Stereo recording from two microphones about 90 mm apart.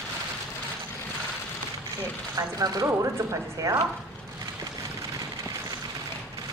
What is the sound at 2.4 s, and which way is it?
Speech, 40° right (ahead or behind).